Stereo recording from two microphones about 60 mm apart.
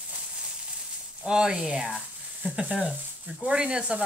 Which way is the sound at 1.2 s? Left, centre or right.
Centre.